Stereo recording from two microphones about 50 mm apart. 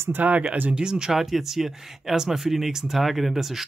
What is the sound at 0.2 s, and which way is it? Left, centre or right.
Speech, right.